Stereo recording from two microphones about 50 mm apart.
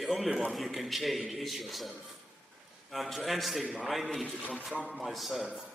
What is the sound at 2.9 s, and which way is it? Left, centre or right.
A man's voice, centre.